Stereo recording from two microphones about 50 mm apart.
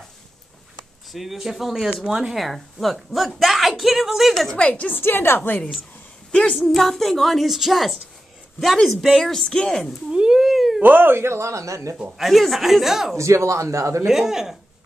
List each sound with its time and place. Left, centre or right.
1.1 s speech: centre
2.3 s a woman's voice: centre
4.3 s speech: centre
4.6 s a woman's voice: left
4.9 s a woman's voice: left
6.3 s a sound: left
6.6 s a woman's voice: centre
9.2 s speech: centre
10.1 s a sound: centre
10.8 s speech: right
12.2 s a woman's voice: centre
13.2 s speech: right
14.0 s speech: centre